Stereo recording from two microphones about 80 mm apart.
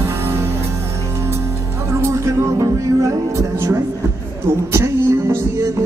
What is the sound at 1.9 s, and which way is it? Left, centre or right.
Music, right.